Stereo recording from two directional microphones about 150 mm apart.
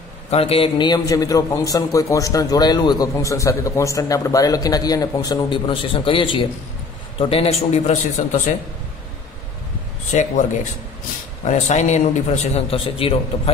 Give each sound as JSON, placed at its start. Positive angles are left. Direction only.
{"t": 0.3, "sound": "a man's voice", "side_deg": 40}
{"t": 10.1, "sound": "a man's voice", "side_deg": 50}
{"t": 11.4, "sound": "a man's voice", "side_deg": 50}